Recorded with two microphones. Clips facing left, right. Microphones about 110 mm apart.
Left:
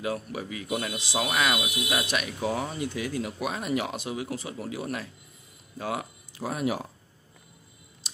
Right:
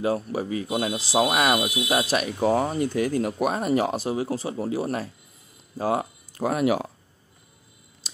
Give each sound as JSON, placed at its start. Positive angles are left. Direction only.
{"t": 0.0, "sound": "speech", "side_deg": -35}
{"t": 6.3, "sound": "speech", "side_deg": -65}